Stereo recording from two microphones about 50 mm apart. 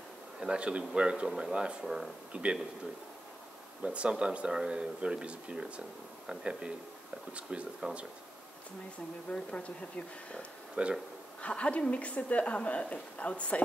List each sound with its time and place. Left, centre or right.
0.4 s speech: centre
2.3 s speech: right
3.8 s speech: right
7.8 s speech: right
9.3 s a woman's voice: left
10.8 s speech: right
11.4 s a woman's voice: left